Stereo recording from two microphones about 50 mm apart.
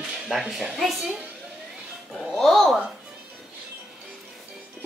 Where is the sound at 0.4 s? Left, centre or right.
Centre.